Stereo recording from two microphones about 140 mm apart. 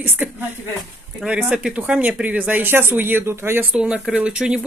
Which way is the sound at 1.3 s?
10° right (ahead or behind).